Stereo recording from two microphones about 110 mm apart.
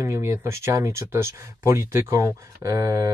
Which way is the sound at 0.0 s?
30° right (ahead or behind).